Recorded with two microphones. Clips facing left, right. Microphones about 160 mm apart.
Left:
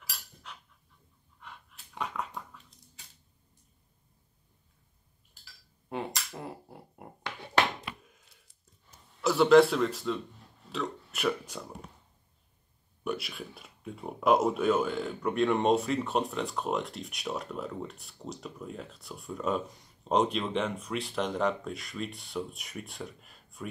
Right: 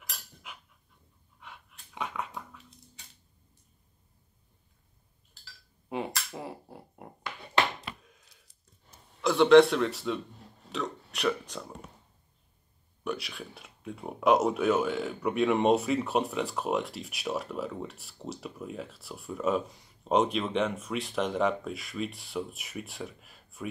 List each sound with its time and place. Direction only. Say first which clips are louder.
1.4 s dog: even; centre (ahead or behind)
5.9 s a sound: right 2 dB; 5° right (ahead or behind)
7.8 s coin: even; 40° right (ahead or behind)
9.2 s speech: right 2 dB; 5° left (ahead or behind)
10.7 s a sound: even; centre (ahead or behind)
13.0 s speech: even; 5° left (ahead or behind)